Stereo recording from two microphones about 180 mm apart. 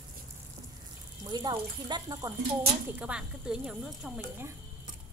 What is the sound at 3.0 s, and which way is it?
Speech, 5° right (ahead or behind).